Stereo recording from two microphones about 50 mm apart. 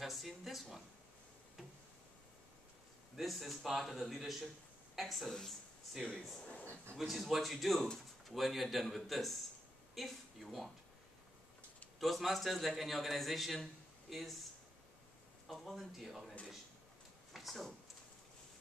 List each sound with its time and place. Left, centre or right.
0.0 s speech: centre
3.2 s a man's voice: centre
6.0 s speech: left
7.0 s a man's voice: centre
12.0 s a man's voice: centre
15.4 s a man's voice: centre